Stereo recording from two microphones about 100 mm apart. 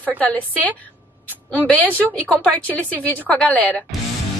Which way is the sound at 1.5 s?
15° left (ahead or behind).